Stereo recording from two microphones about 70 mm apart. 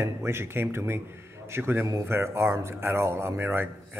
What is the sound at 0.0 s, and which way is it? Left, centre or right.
Speech, right.